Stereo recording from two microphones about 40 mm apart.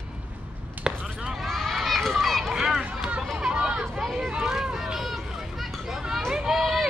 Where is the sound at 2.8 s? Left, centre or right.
Right.